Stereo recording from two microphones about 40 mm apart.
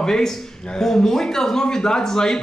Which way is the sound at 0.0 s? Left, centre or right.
Centre.